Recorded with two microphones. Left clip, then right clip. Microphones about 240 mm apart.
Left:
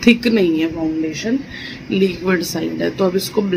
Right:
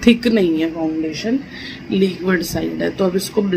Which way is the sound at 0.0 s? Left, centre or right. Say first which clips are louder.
Left 1 dB; centre.